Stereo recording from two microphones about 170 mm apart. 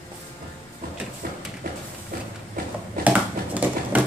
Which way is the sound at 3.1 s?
10° right (ahead or behind).